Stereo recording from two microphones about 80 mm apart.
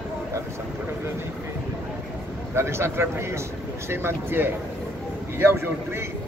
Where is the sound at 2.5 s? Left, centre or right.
Right.